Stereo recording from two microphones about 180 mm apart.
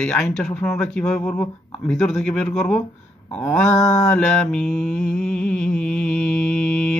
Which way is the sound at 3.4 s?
15° left (ahead or behind).